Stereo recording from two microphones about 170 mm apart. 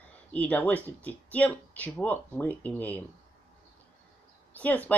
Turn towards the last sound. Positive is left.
turn(degrees=10)  # may be behind; listen again after turning